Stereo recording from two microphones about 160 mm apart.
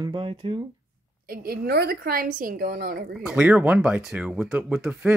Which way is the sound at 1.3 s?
70° right (ahead or behind).